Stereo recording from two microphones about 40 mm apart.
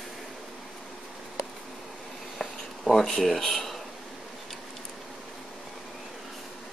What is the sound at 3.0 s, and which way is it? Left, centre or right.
Speech, centre.